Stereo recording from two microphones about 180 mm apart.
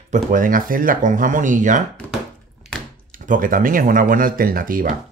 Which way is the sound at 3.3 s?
50° right (ahead or behind).